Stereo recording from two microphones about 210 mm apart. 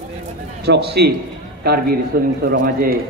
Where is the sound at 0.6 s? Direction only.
50° right (ahead or behind).